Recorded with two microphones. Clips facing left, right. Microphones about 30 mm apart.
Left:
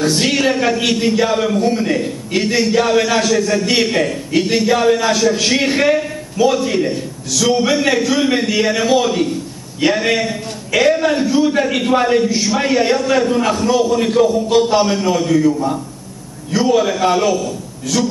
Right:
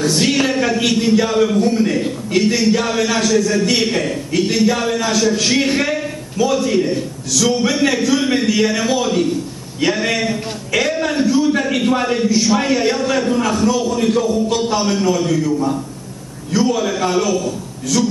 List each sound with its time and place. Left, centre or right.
0.0 s a man's voice: centre